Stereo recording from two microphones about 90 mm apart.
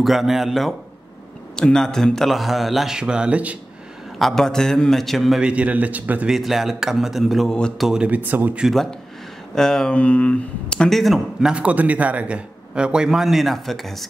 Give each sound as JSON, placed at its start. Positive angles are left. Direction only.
{"t": 0.0, "sound": "a man's voice", "side_deg": 0}
{"t": 4.2, "sound": "a man's voice", "side_deg": 5}
{"t": 5.4, "sound": "a man's voice", "side_deg": -15}
{"t": 6.2, "sound": "a man's voice", "side_deg": 0}
{"t": 9.6, "sound": "speech", "side_deg": 5}
{"t": 11.5, "sound": "a man's voice", "side_deg": -15}